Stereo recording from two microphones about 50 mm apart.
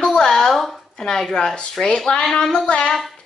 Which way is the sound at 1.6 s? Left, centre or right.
Centre.